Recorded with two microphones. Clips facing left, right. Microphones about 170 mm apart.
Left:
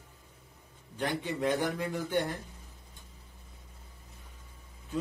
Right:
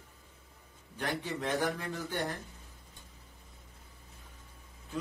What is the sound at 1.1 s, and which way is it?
Speech, 15° left (ahead or behind).